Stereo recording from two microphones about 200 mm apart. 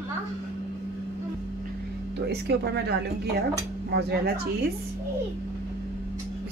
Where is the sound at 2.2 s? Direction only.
55° right (ahead or behind).